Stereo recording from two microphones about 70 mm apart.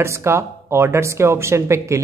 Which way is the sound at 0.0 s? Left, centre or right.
Right.